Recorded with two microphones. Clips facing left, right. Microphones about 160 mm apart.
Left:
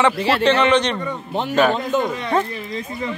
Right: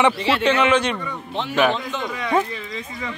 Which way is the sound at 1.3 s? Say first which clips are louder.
Left 2 dB; 45° left (ahead or behind).